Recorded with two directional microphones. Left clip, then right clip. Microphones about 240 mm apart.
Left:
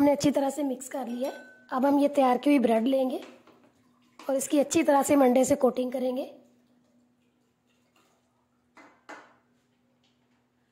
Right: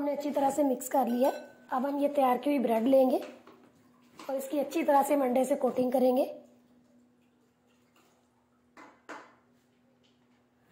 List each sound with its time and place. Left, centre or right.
0.0 s a woman's voice: left
0.5 s a woman's voice: centre
0.7 s speech: centre
1.7 s a woman's voice: left
3.0 s speech: centre
4.3 s a woman's voice: left
5.9 s a woman's voice: centre